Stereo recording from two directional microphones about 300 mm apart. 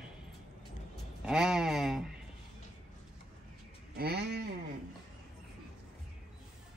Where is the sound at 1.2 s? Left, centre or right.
Centre.